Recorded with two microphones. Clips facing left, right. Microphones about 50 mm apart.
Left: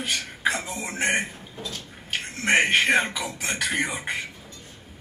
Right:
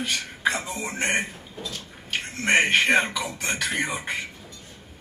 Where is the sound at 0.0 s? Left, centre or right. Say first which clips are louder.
Even; centre.